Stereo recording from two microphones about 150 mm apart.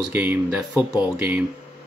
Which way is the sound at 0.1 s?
15° right (ahead or behind).